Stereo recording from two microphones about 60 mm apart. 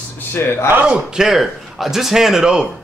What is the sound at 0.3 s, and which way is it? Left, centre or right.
Speech, left.